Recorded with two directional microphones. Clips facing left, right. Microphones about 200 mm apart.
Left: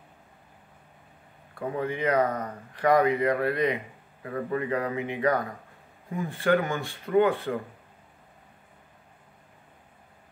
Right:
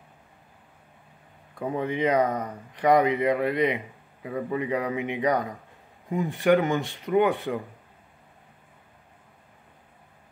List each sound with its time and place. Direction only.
1.6 s speech: 20° right (ahead or behind)